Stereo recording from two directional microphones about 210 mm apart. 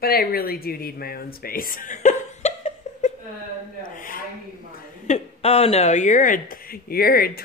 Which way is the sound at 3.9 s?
40° left (ahead or behind).